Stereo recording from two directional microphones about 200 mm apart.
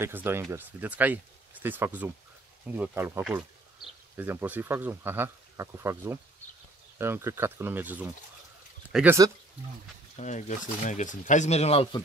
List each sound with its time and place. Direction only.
0.0 s speech: 10° right (ahead or behind)
10.1 s speech: 35° left (ahead or behind)